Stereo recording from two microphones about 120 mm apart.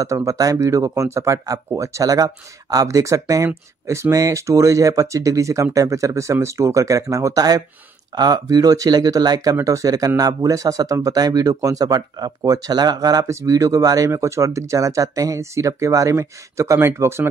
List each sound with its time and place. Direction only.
0.0 s speech: 25° right (ahead or behind)